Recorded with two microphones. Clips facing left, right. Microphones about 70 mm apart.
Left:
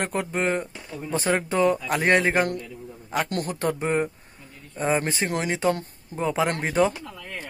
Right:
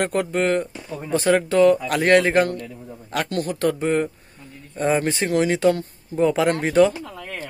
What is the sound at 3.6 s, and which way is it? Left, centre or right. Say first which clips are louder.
Speech: right 5 dB; centre.